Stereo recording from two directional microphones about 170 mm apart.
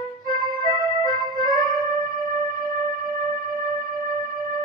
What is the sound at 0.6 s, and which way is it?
Music, 25° left (ahead or behind).